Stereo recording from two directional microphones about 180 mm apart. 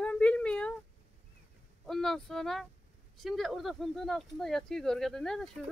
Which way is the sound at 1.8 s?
Centre (ahead or behind).